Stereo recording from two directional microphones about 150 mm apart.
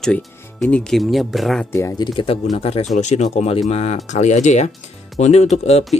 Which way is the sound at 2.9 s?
50° left (ahead or behind).